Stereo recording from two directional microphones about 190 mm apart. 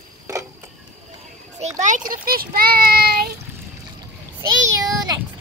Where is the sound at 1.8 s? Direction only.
45° right (ahead or behind).